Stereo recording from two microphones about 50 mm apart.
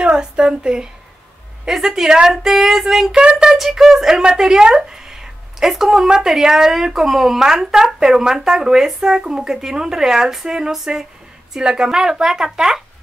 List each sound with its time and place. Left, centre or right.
0.1 s speech: centre
2.1 s child singing: centre
3.2 s speech: centre
4.9 s a sound: centre
6.2 s speech: centre